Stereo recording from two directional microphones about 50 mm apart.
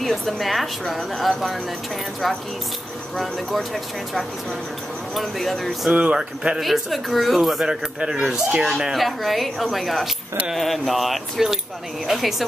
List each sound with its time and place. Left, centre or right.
0.0 s speech: centre
5.9 s speech: centre
6.6 s a man's voice: centre